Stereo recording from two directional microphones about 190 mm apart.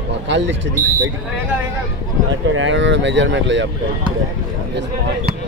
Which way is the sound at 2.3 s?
85° right.